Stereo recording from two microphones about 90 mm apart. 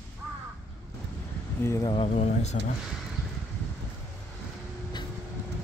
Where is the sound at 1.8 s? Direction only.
65° left (ahead or behind).